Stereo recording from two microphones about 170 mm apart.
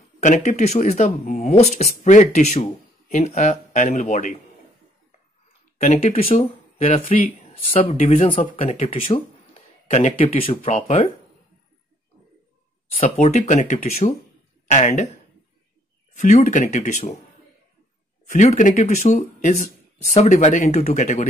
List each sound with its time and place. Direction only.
0.2 s speech: 45° left (ahead or behind)
5.8 s speech: 45° left (ahead or behind)
13.2 s speech: 45° left (ahead or behind)
16.2 s speech: 45° left (ahead or behind)
18.3 s speech: 45° left (ahead or behind)